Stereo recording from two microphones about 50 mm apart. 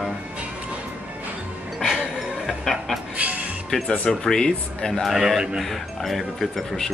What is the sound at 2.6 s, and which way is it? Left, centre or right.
Speech, centre.